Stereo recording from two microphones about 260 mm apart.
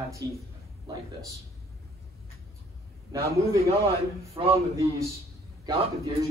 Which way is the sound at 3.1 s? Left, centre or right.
Centre.